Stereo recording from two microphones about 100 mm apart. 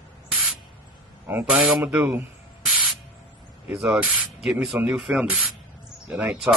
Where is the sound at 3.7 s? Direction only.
5° right (ahead or behind).